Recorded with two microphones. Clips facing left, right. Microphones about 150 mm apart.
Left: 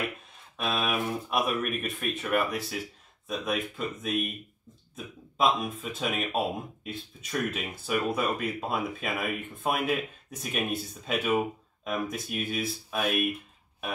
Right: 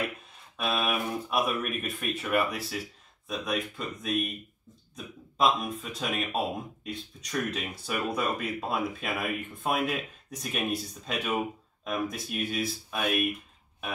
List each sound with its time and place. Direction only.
0.6 s speech: centre (ahead or behind)